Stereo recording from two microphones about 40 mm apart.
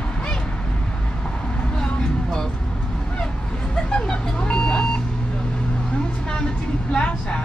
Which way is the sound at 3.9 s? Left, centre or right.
Left.